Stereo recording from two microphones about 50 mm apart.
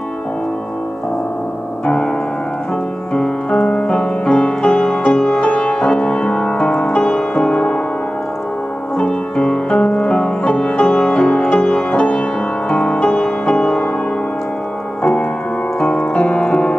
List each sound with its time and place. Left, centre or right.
3.2 s music: centre
8.9 s music: centre
15.8 s music: left